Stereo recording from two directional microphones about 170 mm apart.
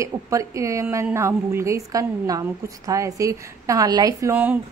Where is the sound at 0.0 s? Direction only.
20° right (ahead or behind).